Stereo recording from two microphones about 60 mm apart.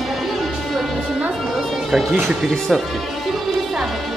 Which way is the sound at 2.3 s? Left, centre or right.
Centre.